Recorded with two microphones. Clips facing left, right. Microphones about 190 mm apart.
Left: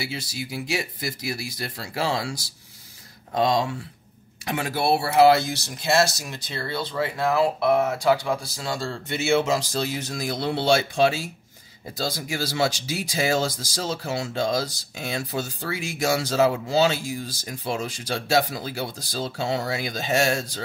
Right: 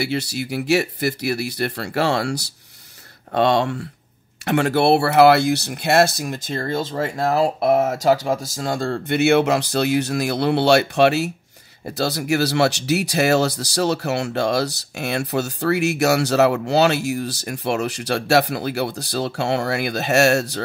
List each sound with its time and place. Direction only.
0.0 s speech: 70° right (ahead or behind)